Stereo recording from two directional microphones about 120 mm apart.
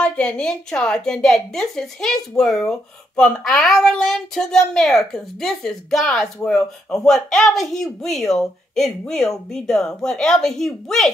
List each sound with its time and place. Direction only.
0.0 s a child's voice: 10° left (ahead or behind)